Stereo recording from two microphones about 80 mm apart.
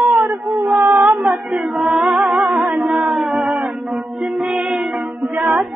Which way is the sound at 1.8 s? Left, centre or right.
Centre.